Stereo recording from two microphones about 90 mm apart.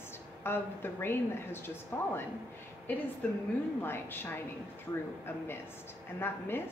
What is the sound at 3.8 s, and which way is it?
Speech, 25° left (ahead or behind).